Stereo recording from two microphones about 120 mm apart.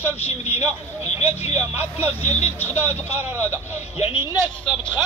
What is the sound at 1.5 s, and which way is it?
Vehicle, 15° right (ahead or behind).